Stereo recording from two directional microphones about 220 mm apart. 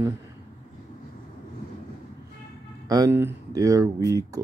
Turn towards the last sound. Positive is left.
turn(degrees=-15)  # may be behind; listen again after turning